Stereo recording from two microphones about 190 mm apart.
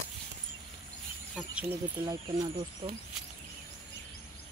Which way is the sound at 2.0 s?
25° right (ahead or behind).